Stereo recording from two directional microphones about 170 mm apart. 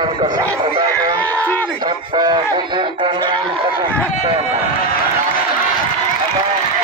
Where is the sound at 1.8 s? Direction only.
25° right (ahead or behind).